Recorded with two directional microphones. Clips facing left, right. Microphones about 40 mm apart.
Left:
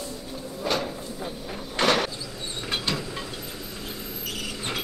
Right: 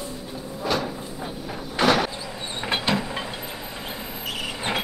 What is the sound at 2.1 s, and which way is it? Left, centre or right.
Vehicle, right.